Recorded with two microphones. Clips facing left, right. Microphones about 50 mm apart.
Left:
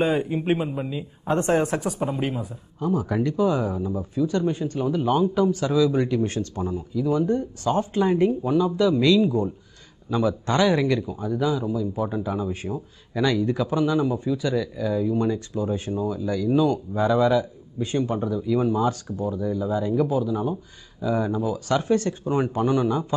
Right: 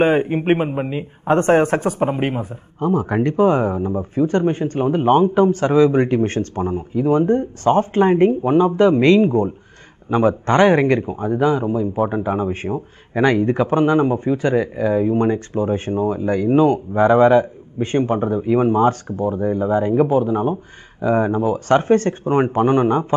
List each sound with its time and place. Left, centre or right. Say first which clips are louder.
0.0 s speech: right 7 dB; right